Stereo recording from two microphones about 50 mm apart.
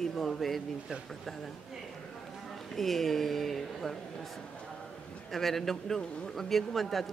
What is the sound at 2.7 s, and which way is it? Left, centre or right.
Speech, centre.